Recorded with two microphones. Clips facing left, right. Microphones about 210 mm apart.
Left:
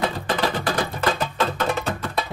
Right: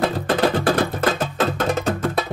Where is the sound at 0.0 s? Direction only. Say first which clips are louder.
Right 5 dB; 50° right (ahead or behind).